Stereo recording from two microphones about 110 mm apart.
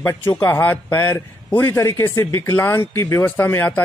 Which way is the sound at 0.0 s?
20° left (ahead or behind).